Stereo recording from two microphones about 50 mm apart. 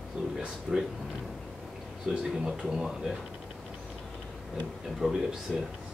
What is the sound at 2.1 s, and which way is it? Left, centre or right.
Speech, centre.